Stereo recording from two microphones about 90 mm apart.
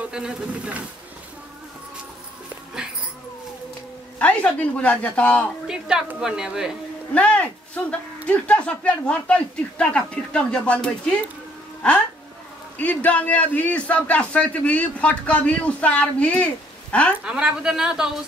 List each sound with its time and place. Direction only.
0.1 s a woman's voice: 10° right (ahead or behind)
4.2 s a man's voice: 15° left (ahead or behind)
5.7 s a woman's voice: 10° right (ahead or behind)
7.2 s a man's voice: 15° left (ahead or behind)
12.7 s a man's voice: 15° left (ahead or behind)
17.2 s a woman's voice: 10° right (ahead or behind)